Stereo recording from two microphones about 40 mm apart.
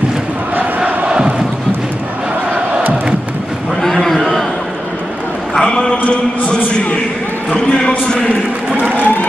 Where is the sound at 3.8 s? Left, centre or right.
Centre.